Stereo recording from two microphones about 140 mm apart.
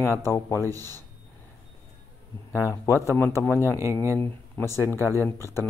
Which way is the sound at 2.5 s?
20° left (ahead or behind).